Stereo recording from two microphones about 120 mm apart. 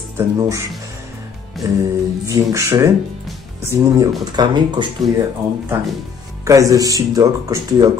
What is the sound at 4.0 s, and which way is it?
Speech, 40° right (ahead or behind).